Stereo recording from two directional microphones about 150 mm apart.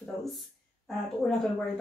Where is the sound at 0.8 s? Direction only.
Centre (ahead or behind).